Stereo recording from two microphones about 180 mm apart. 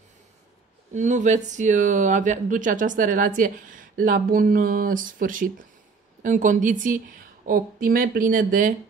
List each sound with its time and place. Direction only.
0.9 s speech: 40° right (ahead or behind)